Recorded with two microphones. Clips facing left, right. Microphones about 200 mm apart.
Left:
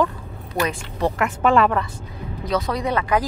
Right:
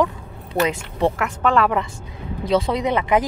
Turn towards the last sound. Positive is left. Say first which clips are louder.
# right 2 dB
turn(degrees=-20)  # may be behind; listen again after turning